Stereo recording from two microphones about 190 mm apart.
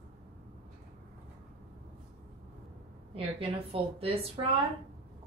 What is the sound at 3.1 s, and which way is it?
A woman's voice, 30° right (ahead or behind).